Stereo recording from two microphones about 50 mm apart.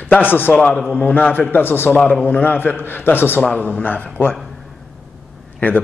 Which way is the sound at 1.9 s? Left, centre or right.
Left.